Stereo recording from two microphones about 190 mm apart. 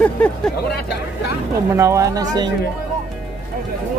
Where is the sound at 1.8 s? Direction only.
15° right (ahead or behind).